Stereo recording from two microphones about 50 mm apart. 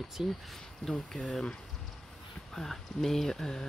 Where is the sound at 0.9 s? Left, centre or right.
Left.